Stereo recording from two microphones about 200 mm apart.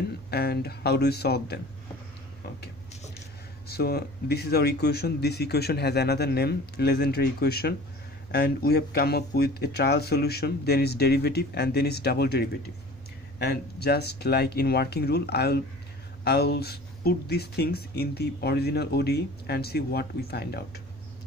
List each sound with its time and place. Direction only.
0.3 s speech: 55° left (ahead or behind)
3.6 s speech: 50° left (ahead or behind)